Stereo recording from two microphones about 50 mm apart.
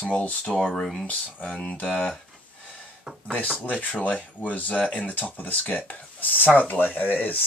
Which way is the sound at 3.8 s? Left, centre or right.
Left.